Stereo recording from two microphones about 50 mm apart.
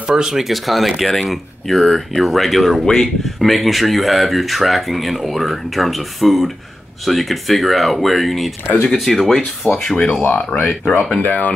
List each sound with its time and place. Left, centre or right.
0.1 s speech: centre
9.9 s speech: left
11.2 s speech: left